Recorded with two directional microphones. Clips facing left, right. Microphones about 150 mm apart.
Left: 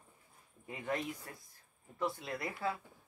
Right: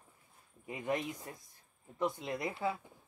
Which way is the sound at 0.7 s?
15° right (ahead or behind).